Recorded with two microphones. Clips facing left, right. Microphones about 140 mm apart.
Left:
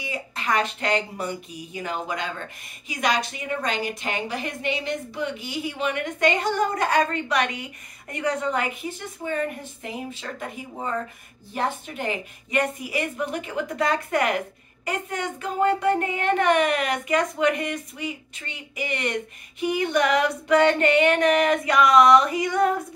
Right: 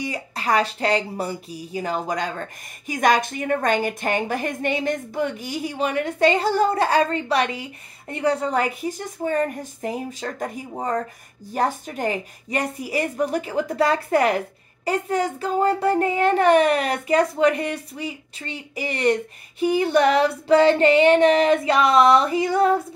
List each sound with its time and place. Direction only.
0.0 s a woman's voice: 40° right (ahead or behind)